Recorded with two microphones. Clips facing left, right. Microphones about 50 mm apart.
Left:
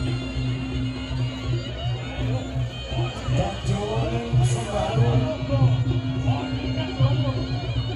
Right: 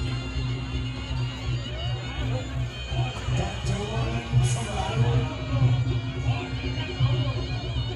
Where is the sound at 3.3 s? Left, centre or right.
Left.